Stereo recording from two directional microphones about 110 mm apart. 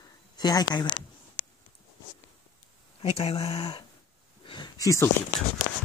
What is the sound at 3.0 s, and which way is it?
Speech, 55° left (ahead or behind).